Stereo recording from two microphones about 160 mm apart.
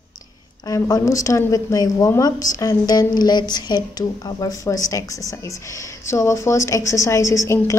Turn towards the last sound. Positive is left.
turn(degrees=20)  # may be behind; listen again after turning